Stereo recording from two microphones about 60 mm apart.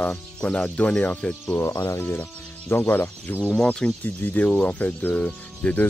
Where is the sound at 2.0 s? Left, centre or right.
Left.